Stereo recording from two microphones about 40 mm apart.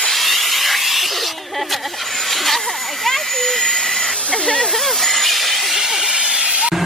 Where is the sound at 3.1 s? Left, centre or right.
Centre.